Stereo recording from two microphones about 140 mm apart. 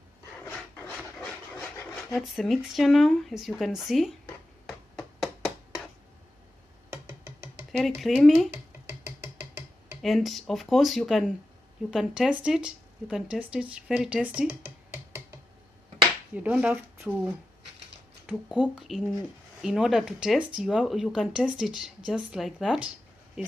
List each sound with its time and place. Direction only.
0.4 s filing: 10° left (ahead or behind)
2.1 s speech: centre (ahead or behind)
4.6 s a sound: centre (ahead or behind)
7.7 s speech: centre (ahead or behind)
10.0 s speech: centre (ahead or behind)
16.3 s speech: 10° right (ahead or behind)
18.5 s speech: 5° right (ahead or behind)